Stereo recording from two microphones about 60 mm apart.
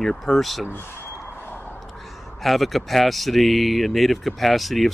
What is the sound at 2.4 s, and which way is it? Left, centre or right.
Speech, centre.